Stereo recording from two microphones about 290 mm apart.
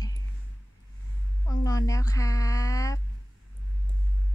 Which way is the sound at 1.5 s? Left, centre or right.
Centre.